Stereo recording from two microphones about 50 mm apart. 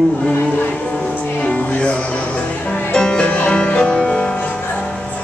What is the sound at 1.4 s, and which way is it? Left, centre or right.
Music, left.